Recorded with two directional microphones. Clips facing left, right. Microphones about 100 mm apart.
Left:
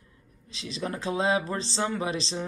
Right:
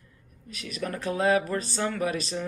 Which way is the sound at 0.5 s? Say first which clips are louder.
Even; 25° left (ahead or behind).